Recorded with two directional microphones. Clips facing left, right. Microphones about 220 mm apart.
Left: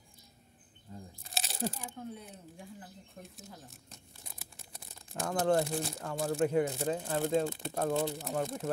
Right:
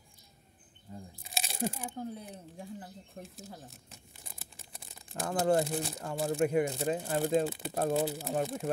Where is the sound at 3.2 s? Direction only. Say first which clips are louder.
Right 4 dB; 35° right (ahead or behind).